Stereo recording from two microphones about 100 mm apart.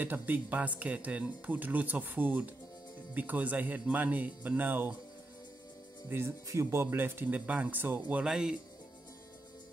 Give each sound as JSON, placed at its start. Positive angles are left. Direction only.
{"t": 0.0, "sound": "speech", "side_deg": -20}
{"t": 6.0, "sound": "speech", "side_deg": -25}
{"t": 8.2, "sound": "speech", "side_deg": -5}